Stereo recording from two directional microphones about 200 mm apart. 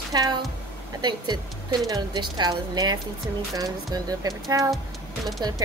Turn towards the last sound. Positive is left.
turn(degrees=-20)  # may be behind; listen again after turning